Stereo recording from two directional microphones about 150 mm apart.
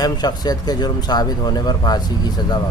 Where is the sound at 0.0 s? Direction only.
25° left (ahead or behind).